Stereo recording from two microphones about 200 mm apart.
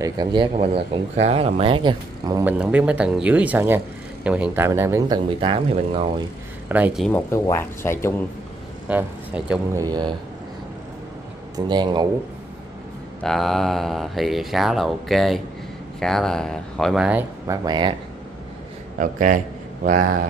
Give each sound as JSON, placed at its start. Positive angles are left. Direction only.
{"t": 0.0, "sound": "speech", "side_deg": -20}
{"t": 2.4, "sound": "speech", "side_deg": -5}
{"t": 6.7, "sound": "speech", "side_deg": -5}
{"t": 7.1, "sound": "speech", "side_deg": 10}
{"t": 8.8, "sound": "speech", "side_deg": -5}
{"t": 9.8, "sound": "speech", "side_deg": -20}
{"t": 11.5, "sound": "speech", "side_deg": -20}
{"t": 13.2, "sound": "speech", "side_deg": 0}
{"t": 17.6, "sound": "speech", "side_deg": -20}
{"t": 18.9, "sound": "speech", "side_deg": -40}